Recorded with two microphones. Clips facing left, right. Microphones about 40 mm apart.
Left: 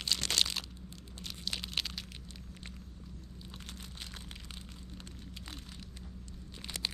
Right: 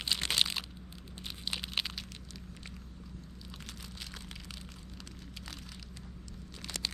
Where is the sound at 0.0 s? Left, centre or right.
Centre.